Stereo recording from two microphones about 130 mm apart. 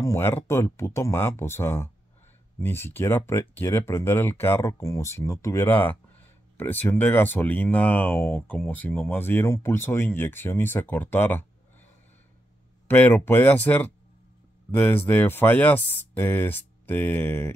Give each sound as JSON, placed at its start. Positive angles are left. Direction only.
{"t": 0.0, "sound": "speech", "side_deg": 20}
{"t": 12.8, "sound": "speech", "side_deg": 15}